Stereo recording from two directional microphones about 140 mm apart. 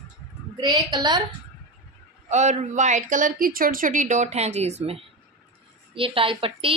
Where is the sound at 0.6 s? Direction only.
30° right (ahead or behind).